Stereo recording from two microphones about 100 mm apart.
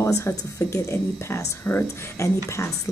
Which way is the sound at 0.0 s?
25° left (ahead or behind).